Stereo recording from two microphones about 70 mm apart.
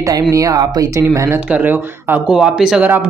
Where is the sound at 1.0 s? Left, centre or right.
Right.